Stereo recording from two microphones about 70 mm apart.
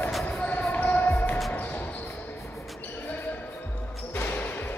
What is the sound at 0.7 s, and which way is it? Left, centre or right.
Basketball bounce, left.